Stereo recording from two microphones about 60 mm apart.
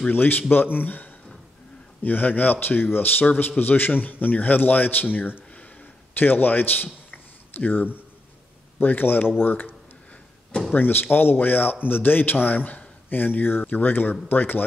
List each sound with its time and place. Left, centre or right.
0.1 s a man's voice: left
10.7 s a man's voice: left